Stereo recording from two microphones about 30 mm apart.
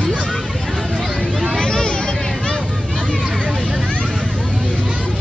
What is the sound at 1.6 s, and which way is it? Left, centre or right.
Hubbub, left.